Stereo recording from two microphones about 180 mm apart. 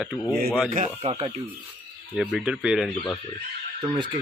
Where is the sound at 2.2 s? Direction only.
5° right (ahead or behind).